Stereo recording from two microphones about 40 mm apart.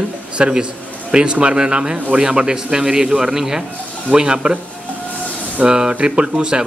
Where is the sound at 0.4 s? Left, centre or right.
Right.